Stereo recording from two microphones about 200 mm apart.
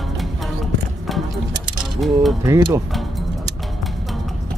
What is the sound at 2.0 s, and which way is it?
Mechanisms, centre (ahead or behind).